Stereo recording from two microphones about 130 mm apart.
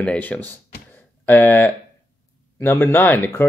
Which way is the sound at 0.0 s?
10° left (ahead or behind).